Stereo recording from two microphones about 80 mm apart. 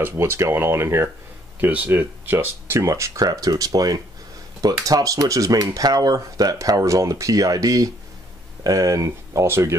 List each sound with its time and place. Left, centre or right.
0.0 s speech: right